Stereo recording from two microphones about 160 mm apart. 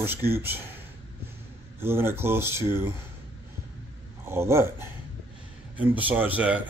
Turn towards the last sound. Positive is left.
turn(degrees=-10)  # may be behind; listen again after turning